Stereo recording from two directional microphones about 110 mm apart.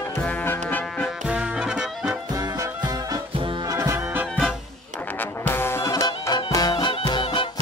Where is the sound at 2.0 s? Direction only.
30° right (ahead or behind).